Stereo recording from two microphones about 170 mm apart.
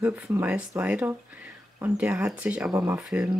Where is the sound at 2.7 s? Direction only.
20° right (ahead or behind).